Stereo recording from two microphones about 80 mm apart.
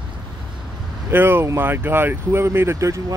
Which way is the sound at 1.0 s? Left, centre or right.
Right.